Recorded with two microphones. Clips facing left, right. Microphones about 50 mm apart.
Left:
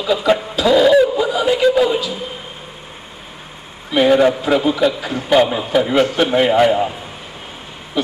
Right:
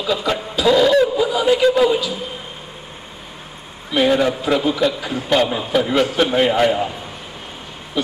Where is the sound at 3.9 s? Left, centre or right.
Centre.